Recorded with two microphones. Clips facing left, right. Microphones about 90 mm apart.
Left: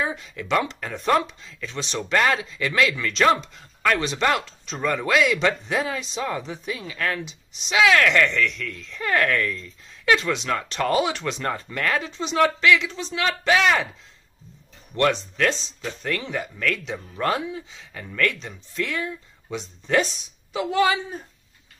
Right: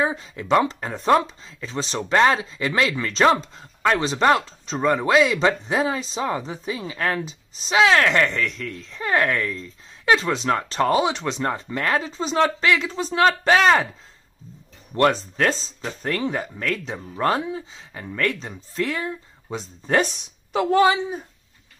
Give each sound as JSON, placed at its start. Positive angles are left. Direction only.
{"t": 0.0, "sound": "speech", "side_deg": -30}
{"t": 15.0, "sound": "speech", "side_deg": -35}